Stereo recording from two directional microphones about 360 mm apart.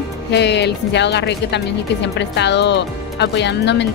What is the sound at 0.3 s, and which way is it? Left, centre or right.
Speech, left.